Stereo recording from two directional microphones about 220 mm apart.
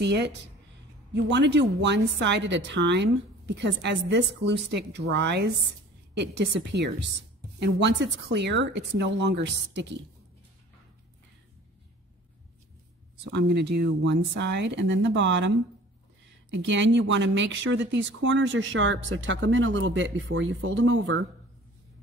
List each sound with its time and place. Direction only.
0.0 s speech: 50° right (ahead or behind)
13.2 s speech: 50° right (ahead or behind)